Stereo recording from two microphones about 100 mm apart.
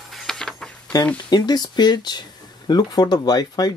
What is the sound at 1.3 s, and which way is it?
Speech, 45° left (ahead or behind).